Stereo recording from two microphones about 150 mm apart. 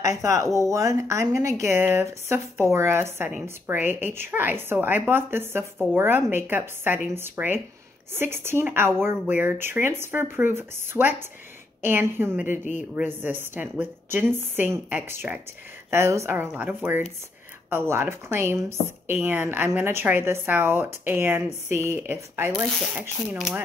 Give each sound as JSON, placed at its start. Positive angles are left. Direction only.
{"t": 0.0, "sound": "speech", "side_deg": -20}